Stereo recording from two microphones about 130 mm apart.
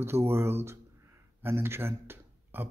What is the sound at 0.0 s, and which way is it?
Speech, 20° right (ahead or behind).